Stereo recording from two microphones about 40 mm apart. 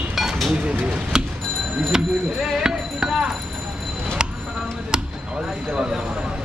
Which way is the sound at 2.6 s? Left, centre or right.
Right.